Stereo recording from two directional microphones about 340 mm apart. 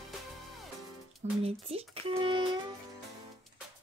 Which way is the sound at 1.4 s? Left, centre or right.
Centre.